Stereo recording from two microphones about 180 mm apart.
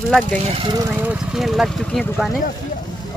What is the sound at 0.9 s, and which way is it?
Speech, 10° right (ahead or behind).